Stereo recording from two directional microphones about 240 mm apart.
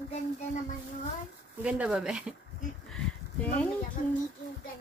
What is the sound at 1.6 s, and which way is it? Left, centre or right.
Speech, centre.